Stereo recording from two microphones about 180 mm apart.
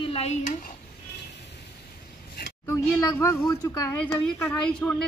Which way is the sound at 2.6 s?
15° left (ahead or behind).